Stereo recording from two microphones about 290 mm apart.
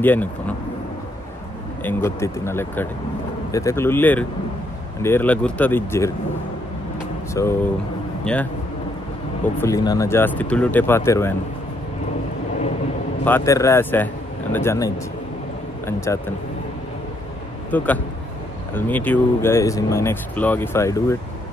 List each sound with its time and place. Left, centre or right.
0.0 s speech: centre
1.8 s speech: centre
7.4 s a man's voice: centre
9.6 s speech: centre
13.2 s speech: centre
17.6 s a man's voice: centre